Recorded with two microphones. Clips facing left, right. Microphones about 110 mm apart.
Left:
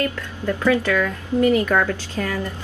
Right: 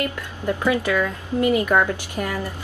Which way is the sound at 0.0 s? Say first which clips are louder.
Left 1 dB; 15° right (ahead or behind).